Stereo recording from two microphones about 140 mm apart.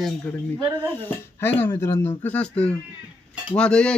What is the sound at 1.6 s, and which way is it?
A man's voice, 15° left (ahead or behind).